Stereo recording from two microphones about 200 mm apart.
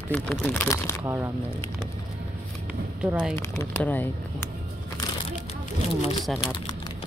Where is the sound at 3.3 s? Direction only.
15° left (ahead or behind).